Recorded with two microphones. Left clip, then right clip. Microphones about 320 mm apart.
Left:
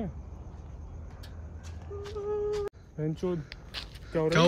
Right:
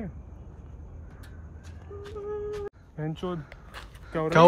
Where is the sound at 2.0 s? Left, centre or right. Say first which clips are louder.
Left 2 dB; centre.